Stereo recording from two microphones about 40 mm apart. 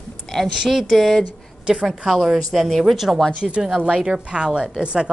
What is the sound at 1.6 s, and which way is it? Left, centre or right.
Speech, centre.